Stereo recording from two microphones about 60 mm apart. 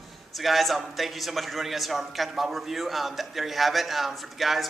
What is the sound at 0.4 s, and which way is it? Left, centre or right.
A man's voice, centre.